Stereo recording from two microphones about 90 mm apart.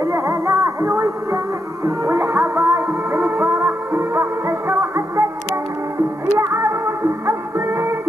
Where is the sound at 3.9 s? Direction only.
30° right (ahead or behind).